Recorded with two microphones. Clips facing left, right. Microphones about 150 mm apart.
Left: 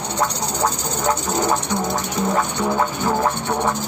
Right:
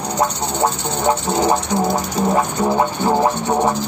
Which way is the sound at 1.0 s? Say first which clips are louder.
Right 4 dB; 20° right (ahead or behind).